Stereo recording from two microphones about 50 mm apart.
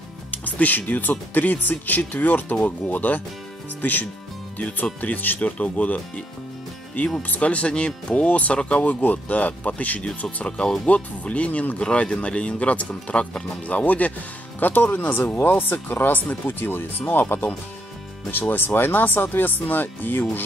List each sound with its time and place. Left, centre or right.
0.3 s speech: left
7.2 s speech: left
10.0 s speech: centre; by 20.4 s left